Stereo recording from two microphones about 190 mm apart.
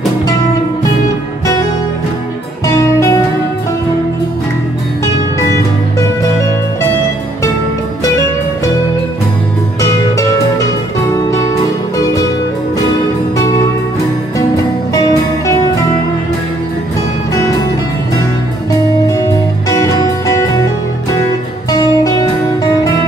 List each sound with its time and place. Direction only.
2.6 s music: 15° left (ahead or behind)
11.2 s music: 15° left (ahead or behind)
13.4 s music: 15° left (ahead or behind)
19.7 s music: 20° left (ahead or behind)
21.6 s music: 20° left (ahead or behind)